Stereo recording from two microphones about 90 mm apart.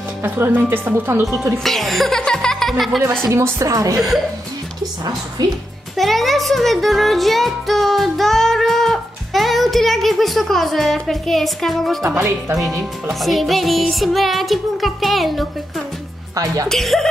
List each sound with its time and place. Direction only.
0.2 s a woman's voice: 25° right (ahead or behind)
1.6 s music: centre (ahead or behind)
3.3 s a woman's voice: 30° right (ahead or behind)
5.4 s a woman's voice: 50° right (ahead or behind)
5.9 s music: centre (ahead or behind)
16.6 s music: 5° left (ahead or behind)